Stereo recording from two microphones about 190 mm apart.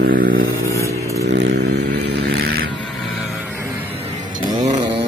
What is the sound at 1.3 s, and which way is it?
Vehicle, 65° right (ahead or behind).